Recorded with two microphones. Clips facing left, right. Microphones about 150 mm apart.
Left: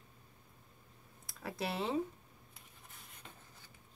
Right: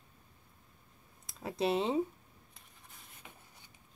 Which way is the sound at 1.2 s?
25° right (ahead or behind).